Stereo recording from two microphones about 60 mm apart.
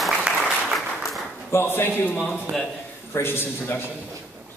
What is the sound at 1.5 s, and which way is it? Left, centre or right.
A man's voice, left.